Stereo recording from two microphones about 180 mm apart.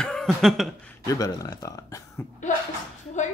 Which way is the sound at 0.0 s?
Centre (ahead or behind).